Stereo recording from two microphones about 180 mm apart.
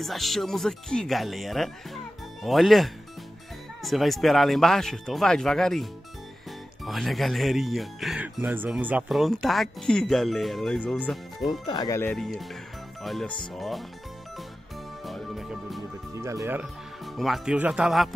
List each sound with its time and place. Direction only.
0.0 s speech: centre (ahead or behind)
11.6 s speech: 20° left (ahead or behind)
12.0 s speech: 5° left (ahead or behind)
15.0 s music: centre (ahead or behind)
17.0 s speech: centre (ahead or behind)